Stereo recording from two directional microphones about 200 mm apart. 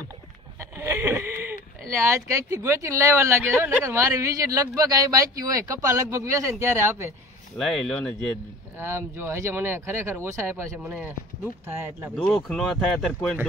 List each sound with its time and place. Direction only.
0.6 s speech: 15° right (ahead or behind)
7.5 s speech: centre (ahead or behind)
8.7 s speech: 10° right (ahead or behind)
12.2 s speech: centre (ahead or behind)